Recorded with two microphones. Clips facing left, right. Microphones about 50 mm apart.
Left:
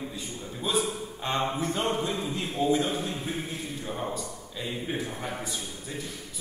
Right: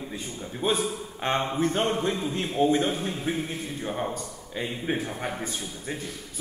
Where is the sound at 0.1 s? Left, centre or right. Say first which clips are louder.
Right 2 dB; right.